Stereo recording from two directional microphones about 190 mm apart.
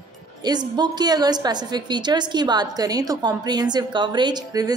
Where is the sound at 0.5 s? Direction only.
20° right (ahead or behind).